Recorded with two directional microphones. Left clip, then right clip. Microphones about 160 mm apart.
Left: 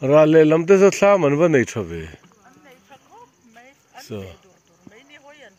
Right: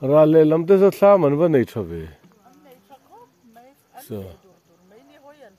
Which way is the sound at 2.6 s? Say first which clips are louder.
Even; 90° right.